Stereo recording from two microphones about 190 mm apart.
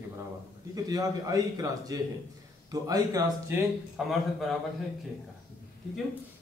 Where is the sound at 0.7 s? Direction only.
20° right (ahead or behind).